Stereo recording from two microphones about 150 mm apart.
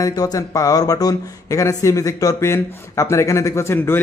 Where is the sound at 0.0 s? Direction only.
25° left (ahead or behind).